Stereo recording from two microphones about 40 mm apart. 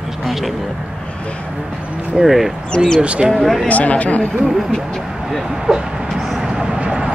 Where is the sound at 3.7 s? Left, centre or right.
Left.